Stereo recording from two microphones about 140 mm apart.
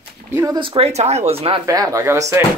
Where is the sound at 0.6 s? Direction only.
40° right (ahead or behind).